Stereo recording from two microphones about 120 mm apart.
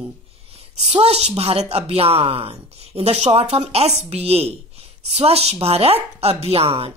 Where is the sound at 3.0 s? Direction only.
65° right (ahead or behind).